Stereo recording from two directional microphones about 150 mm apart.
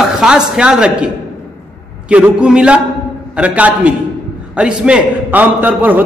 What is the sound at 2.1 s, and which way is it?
A man's voice, 10° right (ahead or behind).